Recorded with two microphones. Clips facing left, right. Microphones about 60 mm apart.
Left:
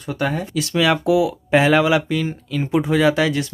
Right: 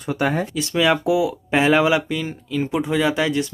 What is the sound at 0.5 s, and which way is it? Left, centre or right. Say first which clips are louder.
Speech: left 3 dB; centre.